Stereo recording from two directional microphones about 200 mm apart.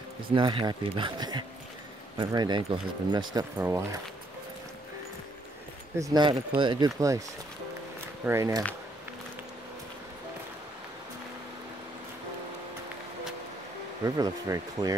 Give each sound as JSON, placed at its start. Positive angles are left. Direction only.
{"t": 0.3, "sound": "speech", "side_deg": -25}
{"t": 5.9, "sound": "speech", "side_deg": -20}
{"t": 8.3, "sound": "speech", "side_deg": -15}
{"t": 14.0, "sound": "speech", "side_deg": -15}